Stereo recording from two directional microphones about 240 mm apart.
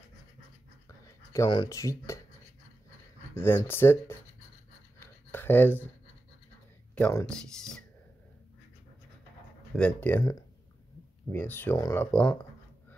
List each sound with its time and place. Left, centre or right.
0.8 s a sound: centre
3.3 s speech: centre
5.0 s writing: centre
7.0 s speech: centre
9.8 s speech: centre
11.3 s speech: centre